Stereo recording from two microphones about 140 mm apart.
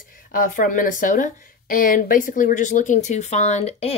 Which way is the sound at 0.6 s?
70° left (ahead or behind).